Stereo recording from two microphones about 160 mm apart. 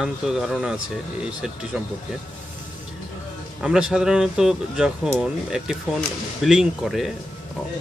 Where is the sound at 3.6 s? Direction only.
5° right (ahead or behind).